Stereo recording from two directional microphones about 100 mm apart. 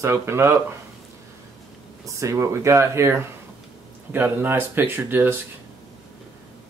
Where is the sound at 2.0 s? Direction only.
30° right (ahead or behind).